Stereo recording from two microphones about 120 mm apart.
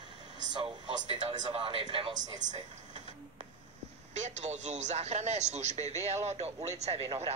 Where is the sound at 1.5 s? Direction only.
45° right (ahead or behind).